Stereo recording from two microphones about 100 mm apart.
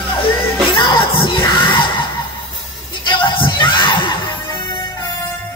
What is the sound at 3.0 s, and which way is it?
Music, 55° left (ahead or behind).